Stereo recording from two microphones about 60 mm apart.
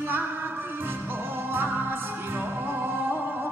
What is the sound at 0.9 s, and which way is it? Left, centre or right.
Music, right.